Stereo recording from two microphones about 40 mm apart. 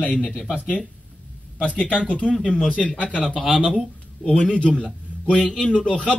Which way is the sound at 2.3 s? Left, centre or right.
Centre.